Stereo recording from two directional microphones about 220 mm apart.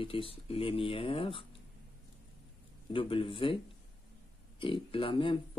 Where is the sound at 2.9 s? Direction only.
25° left (ahead or behind).